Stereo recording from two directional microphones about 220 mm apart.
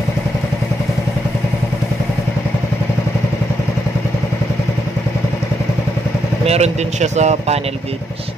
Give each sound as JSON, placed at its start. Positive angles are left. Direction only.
{"t": 6.4, "sound": "speech", "side_deg": -30}